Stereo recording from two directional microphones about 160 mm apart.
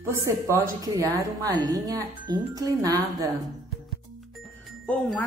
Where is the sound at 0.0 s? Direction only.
20° right (ahead or behind).